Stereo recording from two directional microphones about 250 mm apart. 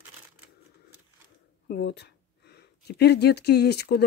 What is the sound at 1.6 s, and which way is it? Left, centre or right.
Speech, left.